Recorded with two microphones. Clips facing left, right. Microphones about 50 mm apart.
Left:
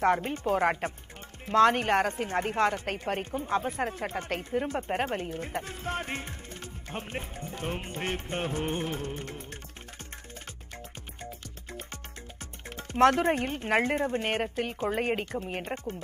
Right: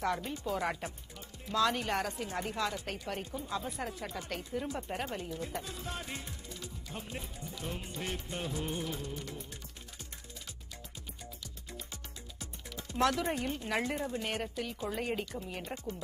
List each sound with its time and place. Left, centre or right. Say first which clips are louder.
0.0 s speech: left 8 dB; left
11.7 s speech: left 6 dB; left